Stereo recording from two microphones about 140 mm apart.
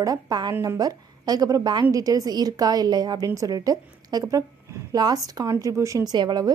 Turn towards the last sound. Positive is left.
turn(degrees=-30)  # may be behind; listen again after turning